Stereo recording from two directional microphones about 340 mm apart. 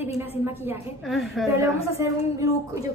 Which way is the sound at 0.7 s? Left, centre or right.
Centre.